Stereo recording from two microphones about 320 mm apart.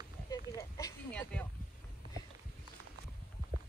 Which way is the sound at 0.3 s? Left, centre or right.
Centre.